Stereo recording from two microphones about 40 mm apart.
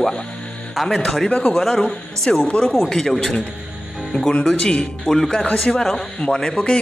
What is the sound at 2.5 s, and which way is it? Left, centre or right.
Speech, left.